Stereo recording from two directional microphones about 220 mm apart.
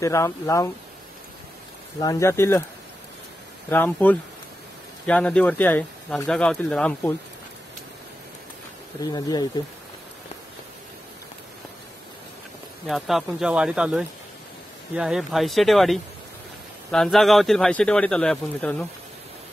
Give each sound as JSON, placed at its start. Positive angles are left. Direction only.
{"t": 0.0, "sound": "speech", "side_deg": 15}
{"t": 2.0, "sound": "speech", "side_deg": 15}
{"t": 3.7, "sound": "speech", "side_deg": 5}
{"t": 9.0, "sound": "speech", "side_deg": 15}
{"t": 12.8, "sound": "speech", "side_deg": 0}